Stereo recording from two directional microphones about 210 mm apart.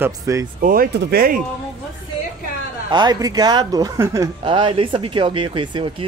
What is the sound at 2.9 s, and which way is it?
Speech, 20° right (ahead or behind).